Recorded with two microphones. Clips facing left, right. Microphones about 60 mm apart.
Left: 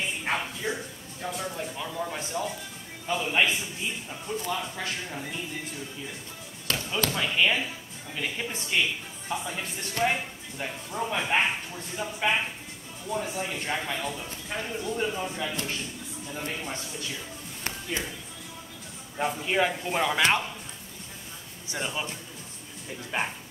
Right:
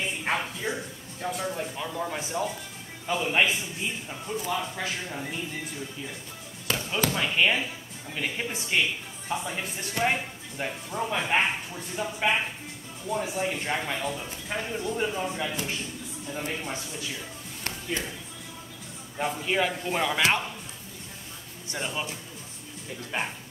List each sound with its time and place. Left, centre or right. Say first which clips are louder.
0.2 s a sound: right 1 dB; centre
1.2 s a man's voice: right 2 dB; centre
6.7 s a man's voice: right 1 dB; centre
17.6 s a sound: right 1 dB; centre
19.1 s speech: left 1 dB; centre
21.6 s speech: even; centre
23.1 s speech: left 1 dB; centre